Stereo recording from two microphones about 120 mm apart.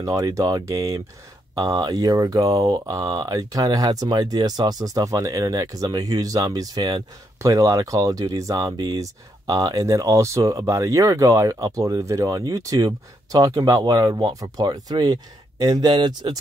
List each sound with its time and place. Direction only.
0.0 s speech: 30° right (ahead or behind)